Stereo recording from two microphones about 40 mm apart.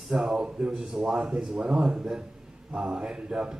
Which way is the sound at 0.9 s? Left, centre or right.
Centre.